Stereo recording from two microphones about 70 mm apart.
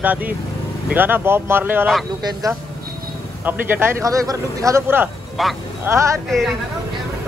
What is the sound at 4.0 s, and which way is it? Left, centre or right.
Speech, right.